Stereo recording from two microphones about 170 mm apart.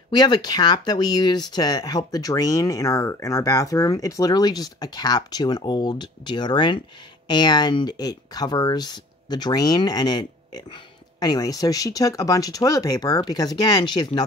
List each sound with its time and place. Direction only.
0.1 s speech: 25° left (ahead or behind)